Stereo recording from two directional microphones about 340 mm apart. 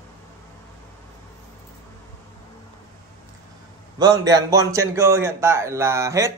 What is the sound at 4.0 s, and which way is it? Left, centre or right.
Speech, centre.